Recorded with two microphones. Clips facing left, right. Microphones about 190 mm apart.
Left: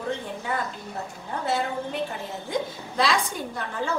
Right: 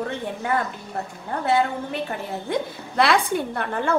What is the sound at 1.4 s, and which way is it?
A woman's voice, 65° right (ahead or behind).